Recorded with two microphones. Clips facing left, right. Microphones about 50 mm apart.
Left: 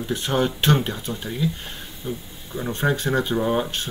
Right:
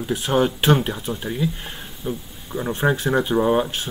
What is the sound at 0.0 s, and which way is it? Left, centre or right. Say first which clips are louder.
Speech: right 3 dB; centre.